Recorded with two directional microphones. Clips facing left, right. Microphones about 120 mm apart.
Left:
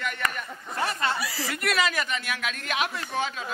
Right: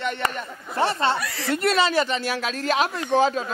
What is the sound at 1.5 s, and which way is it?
Speech, 30° right (ahead or behind).